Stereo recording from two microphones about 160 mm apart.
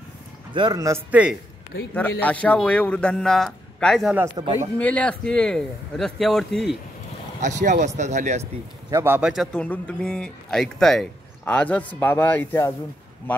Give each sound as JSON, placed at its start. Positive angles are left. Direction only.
{"t": 0.5, "sound": "a man's voice", "side_deg": -30}
{"t": 2.0, "sound": "speech", "side_deg": 10}
{"t": 4.4, "sound": "a man's voice", "side_deg": -30}
{"t": 4.7, "sound": "speech", "side_deg": 10}
{"t": 7.4, "sound": "speech", "side_deg": -50}
{"t": 8.9, "sound": "a man's voice", "side_deg": -15}
{"t": 9.3, "sound": "speech", "side_deg": 5}